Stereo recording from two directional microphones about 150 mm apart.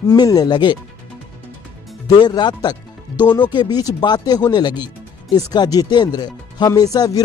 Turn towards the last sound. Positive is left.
turn(degrees=25)  # may be behind; listen again after turning